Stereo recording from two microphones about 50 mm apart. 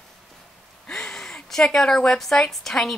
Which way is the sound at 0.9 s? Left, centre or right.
Centre.